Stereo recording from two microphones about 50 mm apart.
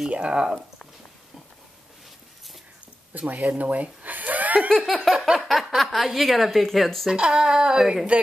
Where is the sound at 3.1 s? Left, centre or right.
Right.